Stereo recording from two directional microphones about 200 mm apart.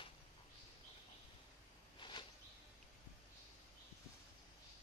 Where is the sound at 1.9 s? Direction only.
25° left (ahead or behind).